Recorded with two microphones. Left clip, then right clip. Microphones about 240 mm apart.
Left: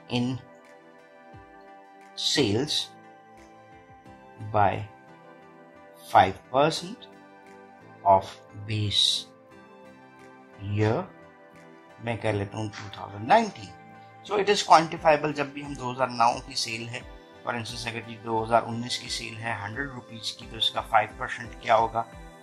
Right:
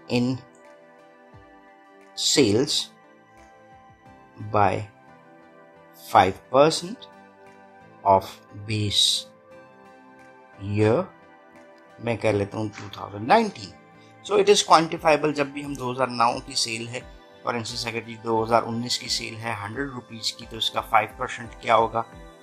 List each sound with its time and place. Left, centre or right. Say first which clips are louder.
0.1 s speech: right 5 dB; centre
2.1 s speech: right 5 dB; centre
4.5 s speech: right 2 dB; centre
6.0 s speech: right 2 dB; centre
10.7 s speech: right 6 dB; centre